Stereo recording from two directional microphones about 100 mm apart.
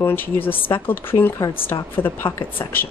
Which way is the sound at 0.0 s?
20° left (ahead or behind).